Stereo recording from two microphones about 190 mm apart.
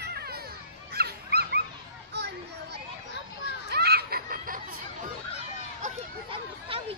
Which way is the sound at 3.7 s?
55° right (ahead or behind).